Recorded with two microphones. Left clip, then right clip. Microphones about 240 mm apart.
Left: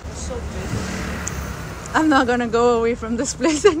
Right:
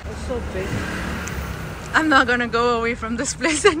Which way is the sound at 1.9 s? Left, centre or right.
Centre.